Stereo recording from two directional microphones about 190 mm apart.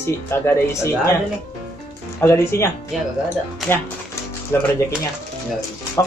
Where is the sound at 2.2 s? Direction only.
15° left (ahead or behind).